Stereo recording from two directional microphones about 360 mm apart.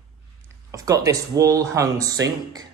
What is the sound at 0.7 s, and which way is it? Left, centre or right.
A man's voice, centre.